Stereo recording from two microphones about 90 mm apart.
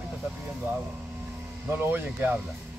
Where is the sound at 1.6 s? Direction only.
25° right (ahead or behind).